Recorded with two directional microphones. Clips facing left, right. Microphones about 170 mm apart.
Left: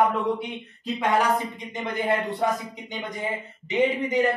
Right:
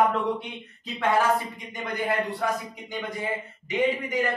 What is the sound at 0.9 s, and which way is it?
A woman's voice, 20° left (ahead or behind).